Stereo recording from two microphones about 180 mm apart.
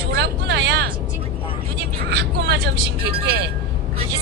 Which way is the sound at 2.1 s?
65° right (ahead or behind).